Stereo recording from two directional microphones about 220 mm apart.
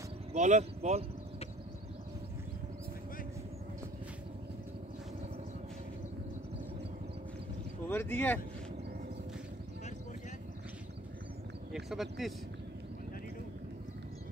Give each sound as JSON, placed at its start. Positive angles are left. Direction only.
{"t": 0.3, "sound": "speech", "side_deg": -30}
{"t": 7.9, "sound": "speech", "side_deg": 10}
{"t": 11.7, "sound": "speech", "side_deg": 0}